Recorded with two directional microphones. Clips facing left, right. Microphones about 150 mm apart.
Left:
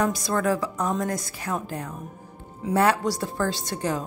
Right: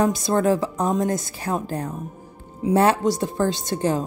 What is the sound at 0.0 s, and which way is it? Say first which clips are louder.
A woman's voice: right 4 dB; 25° right (ahead or behind).